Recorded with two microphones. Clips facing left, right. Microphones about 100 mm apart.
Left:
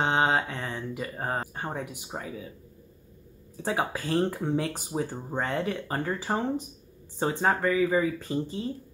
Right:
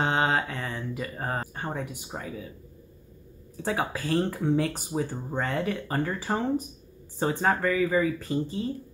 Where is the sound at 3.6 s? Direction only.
20° left (ahead or behind).